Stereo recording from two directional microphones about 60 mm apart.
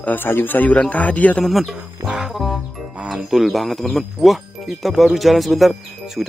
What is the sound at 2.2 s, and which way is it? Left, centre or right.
Music, centre.